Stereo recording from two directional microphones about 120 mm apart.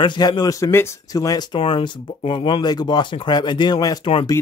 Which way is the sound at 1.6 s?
50° left (ahead or behind).